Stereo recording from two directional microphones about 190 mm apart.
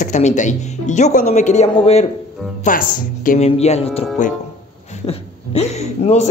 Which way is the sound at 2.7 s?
45° left (ahead or behind).